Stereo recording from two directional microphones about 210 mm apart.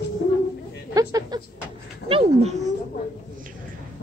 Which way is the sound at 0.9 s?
20° right (ahead or behind).